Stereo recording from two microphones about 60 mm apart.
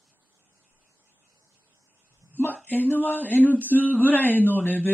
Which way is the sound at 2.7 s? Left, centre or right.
Left.